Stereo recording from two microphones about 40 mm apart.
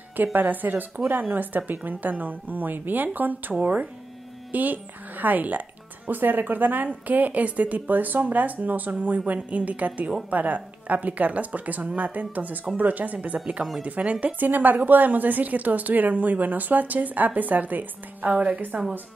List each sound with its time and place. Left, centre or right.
0.1 s a woman's voice: right
14.2 s a woman's voice: right